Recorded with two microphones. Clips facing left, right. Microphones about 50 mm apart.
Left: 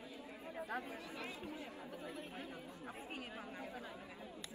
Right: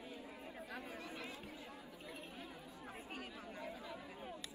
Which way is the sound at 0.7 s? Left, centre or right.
Left.